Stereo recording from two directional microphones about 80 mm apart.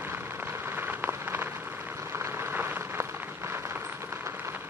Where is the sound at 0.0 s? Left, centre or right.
Right.